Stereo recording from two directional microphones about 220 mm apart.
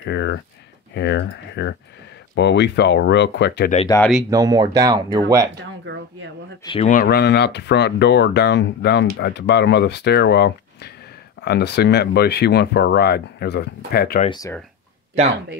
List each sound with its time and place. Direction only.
0.0 s speech: 50° left (ahead or behind)
0.9 s keys jangling: 50° left (ahead or behind)
2.3 s speech: 50° left (ahead or behind)
3.9 s speech: 15° left (ahead or behind)
4.3 s speech: 15° right (ahead or behind)
5.6 s a sound: 55° right (ahead or behind)
6.6 s speech: 25° left (ahead or behind)
6.9 s speech: 45° left (ahead or behind)
14.3 s speech: 15° left (ahead or behind)